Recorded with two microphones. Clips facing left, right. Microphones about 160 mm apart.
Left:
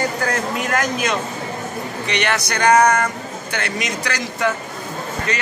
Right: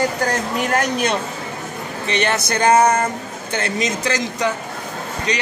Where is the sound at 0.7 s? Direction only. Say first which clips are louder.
Right 2 dB; 30° right (ahead or behind).